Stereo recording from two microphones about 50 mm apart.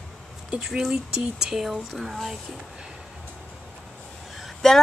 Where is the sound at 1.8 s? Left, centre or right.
Centre.